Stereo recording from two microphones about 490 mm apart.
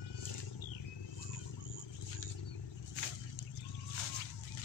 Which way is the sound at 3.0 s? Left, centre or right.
Left.